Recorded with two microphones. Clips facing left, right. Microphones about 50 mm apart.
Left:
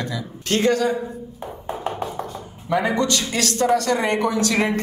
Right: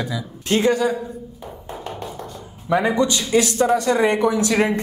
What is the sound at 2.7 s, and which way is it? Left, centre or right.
A man's voice, centre.